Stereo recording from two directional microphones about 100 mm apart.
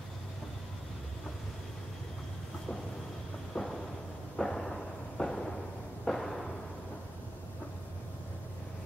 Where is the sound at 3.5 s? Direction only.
5° left (ahead or behind).